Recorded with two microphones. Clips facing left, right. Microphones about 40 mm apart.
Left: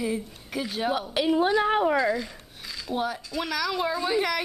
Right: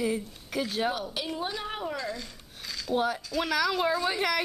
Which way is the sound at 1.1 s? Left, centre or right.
Left.